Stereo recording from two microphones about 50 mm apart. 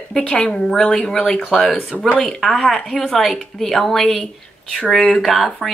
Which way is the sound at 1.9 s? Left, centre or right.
Left.